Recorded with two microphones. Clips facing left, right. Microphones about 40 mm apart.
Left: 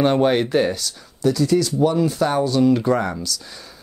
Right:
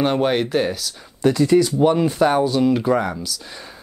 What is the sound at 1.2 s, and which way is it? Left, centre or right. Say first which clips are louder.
Speech: right 3 dB; right.